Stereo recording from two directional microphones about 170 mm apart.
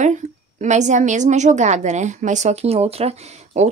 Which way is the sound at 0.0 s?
45° right (ahead or behind).